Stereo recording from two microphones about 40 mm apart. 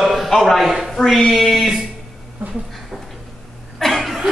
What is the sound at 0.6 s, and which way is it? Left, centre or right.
A man's voice, centre.